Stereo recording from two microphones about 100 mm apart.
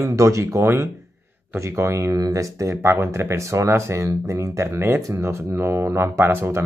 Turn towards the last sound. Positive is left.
turn(degrees=-25)  # may be behind; listen again after turning